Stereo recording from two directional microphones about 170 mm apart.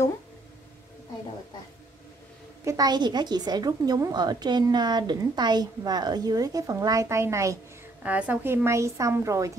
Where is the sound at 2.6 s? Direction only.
20° right (ahead or behind).